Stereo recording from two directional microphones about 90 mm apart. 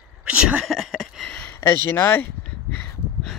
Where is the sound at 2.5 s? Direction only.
20° left (ahead or behind).